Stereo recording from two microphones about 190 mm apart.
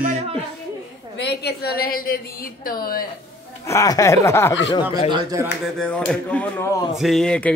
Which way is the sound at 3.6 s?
15° left (ahead or behind).